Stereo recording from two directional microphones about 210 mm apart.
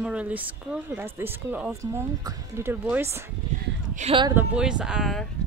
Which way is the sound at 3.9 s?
30° right (ahead or behind).